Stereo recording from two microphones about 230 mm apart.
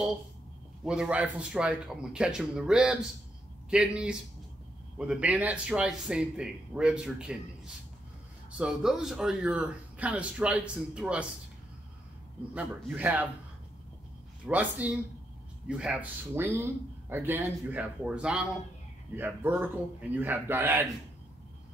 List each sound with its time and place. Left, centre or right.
0.8 s speech: centre
12.5 s a man's voice: centre
14.4 s a man's voice: centre